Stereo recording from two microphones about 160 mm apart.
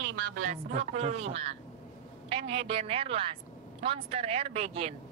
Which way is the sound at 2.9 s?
35° right (ahead or behind).